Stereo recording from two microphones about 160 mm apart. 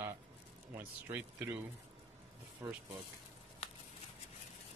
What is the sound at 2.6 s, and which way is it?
Speech, 15° right (ahead or behind).